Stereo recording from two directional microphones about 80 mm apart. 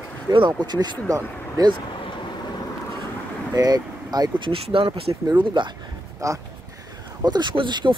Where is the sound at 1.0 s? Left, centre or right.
Right.